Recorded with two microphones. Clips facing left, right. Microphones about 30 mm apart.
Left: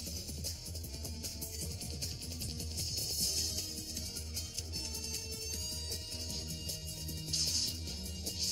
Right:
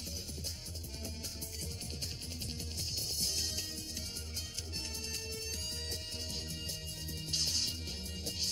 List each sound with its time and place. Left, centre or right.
2.8 s music: centre
7.1 s music: right